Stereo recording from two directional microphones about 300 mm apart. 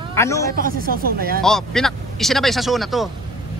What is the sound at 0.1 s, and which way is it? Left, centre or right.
Speech, centre.